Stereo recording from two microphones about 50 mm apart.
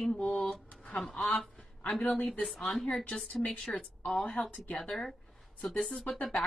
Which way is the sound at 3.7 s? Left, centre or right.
Left.